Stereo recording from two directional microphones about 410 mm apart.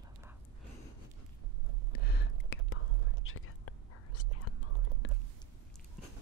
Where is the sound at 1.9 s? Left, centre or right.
Left.